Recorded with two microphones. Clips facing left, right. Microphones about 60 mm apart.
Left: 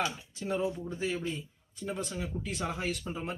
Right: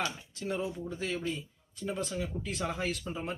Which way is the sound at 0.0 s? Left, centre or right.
Centre.